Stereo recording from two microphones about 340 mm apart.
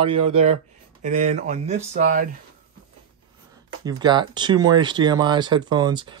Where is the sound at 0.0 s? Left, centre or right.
Centre.